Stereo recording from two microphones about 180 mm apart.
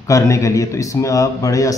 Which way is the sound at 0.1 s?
15° left (ahead or behind).